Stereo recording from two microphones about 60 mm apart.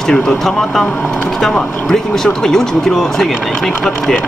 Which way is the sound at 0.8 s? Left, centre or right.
Left.